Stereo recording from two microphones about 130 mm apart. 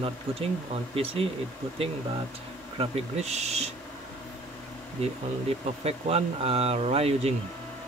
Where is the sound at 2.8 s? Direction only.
55° right (ahead or behind).